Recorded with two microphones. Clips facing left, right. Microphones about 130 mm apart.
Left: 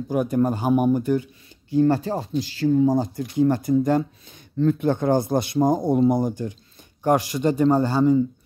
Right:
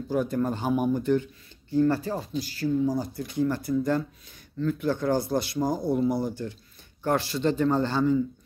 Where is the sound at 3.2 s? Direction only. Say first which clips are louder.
Left 6 dB; 20° left (ahead or behind).